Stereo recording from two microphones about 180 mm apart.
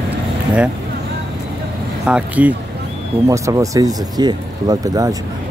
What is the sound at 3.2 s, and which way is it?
Speech, 15° right (ahead or behind).